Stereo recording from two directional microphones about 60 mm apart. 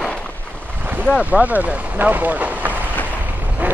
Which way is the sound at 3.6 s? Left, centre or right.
Right.